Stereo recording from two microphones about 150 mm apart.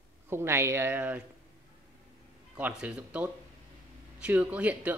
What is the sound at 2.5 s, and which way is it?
A man's voice, 10° right (ahead or behind).